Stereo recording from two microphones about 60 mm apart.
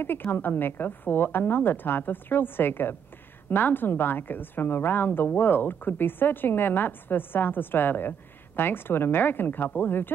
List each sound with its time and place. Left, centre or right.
0.0 s a woman's voice: left